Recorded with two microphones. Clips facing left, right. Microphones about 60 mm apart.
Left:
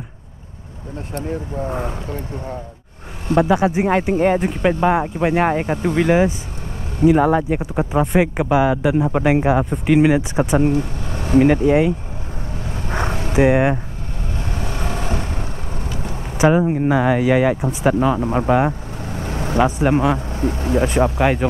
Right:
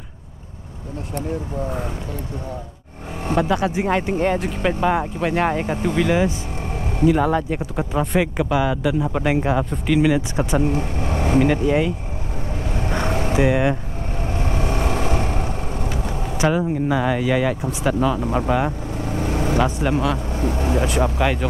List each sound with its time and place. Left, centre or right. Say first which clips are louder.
1.7 s speech: left 3 dB; left
3.3 s speech: left 4 dB; centre
10.7 s vehicle: left 2 dB; right
11.3 s speech: left 5 dB; left
13.1 s vehicle: right 3 dB; right
13.4 s speech: left 5 dB; left
14.6 s vehicle: right 4 dB; right
16.3 s speech: left 5 dB; left
19.1 s vehicle: right 3 dB; right
19.6 s speech: left 8 dB; left
20.2 s vehicle: left 2 dB; left
20.7 s speech: left 6 dB; left